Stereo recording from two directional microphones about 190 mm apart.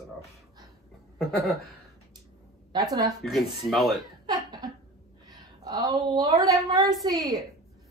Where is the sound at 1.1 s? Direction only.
Centre (ahead or behind).